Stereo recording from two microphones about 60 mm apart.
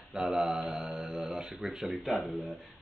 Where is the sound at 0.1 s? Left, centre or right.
Centre.